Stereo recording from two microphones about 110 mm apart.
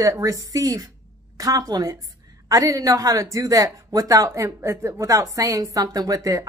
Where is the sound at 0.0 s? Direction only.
30° right (ahead or behind).